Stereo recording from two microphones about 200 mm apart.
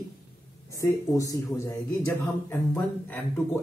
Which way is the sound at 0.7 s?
15° left (ahead or behind).